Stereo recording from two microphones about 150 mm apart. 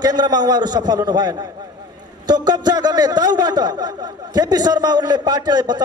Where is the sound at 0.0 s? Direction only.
30° right (ahead or behind).